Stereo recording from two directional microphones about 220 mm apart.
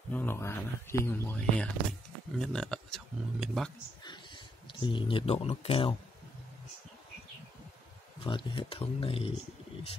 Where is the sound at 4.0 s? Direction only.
20° left (ahead or behind).